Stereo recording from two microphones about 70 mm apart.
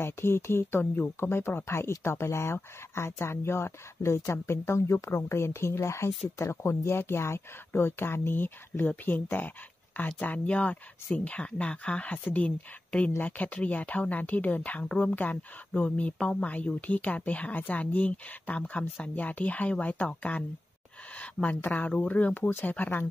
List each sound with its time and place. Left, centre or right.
0.0 s speech: left